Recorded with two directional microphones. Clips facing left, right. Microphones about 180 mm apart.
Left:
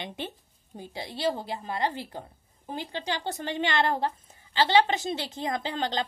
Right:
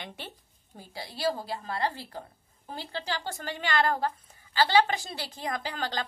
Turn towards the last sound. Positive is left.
turn(degrees=25)  # may be behind; listen again after turning